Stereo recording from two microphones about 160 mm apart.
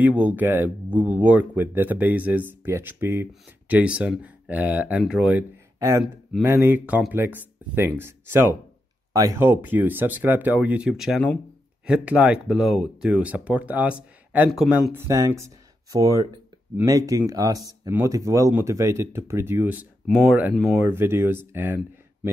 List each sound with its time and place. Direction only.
0.0 s speech: 10° right (ahead or behind)
5.8 s speech: 20° right (ahead or behind)
20.1 s speech: centre (ahead or behind)
20.8 s speech: 15° right (ahead or behind)